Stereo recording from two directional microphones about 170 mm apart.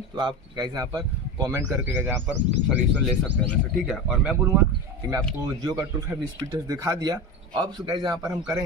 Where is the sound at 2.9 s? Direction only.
5° left (ahead or behind).